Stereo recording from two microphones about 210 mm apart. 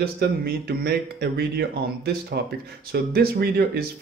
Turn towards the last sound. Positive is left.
turn(degrees=-45)  # may be behind; listen again after turning